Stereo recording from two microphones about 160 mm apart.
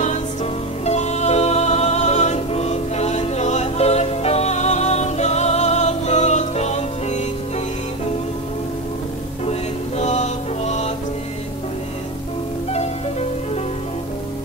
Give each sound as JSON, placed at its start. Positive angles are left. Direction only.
{"t": 0.8, "sound": "music", "side_deg": 45}
{"t": 9.5, "sound": "music", "side_deg": 45}